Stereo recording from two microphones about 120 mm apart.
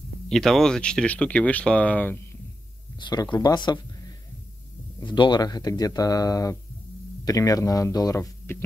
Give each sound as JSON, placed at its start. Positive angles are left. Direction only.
{"t": 0.3, "sound": "speech", "side_deg": 5}
{"t": 3.0, "sound": "speech", "side_deg": 35}
{"t": 5.0, "sound": "speech", "side_deg": 40}